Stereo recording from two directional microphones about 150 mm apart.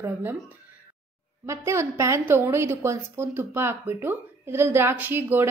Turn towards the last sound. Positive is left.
turn(degrees=-15)  # may be behind; listen again after turning